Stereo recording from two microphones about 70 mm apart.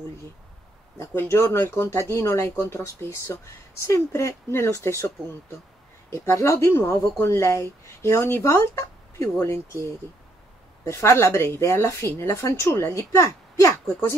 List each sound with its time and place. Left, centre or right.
1.1 s speech: left
6.2 s speech: left
10.8 s speech: left